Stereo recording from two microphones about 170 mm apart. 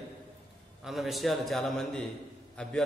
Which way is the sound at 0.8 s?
Centre (ahead or behind).